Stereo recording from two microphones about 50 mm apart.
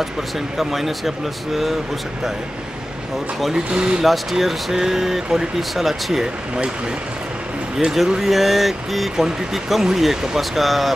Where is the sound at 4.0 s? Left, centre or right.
Centre.